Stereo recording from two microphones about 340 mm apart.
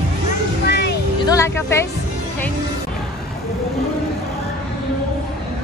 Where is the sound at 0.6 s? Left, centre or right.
Left.